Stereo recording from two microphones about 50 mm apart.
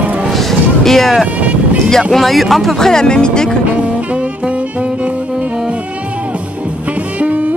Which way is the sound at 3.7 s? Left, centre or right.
Right.